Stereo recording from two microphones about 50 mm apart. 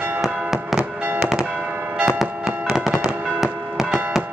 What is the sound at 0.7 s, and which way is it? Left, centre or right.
Fireworks, right.